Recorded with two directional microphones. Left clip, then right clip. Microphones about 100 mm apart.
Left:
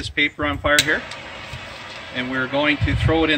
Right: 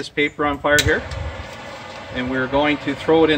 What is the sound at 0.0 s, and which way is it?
Speech, 20° right (ahead or behind).